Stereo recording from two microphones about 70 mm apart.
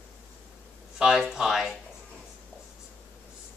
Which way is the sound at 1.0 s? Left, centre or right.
Centre.